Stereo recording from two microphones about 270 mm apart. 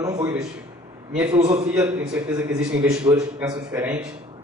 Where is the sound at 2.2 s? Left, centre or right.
Centre.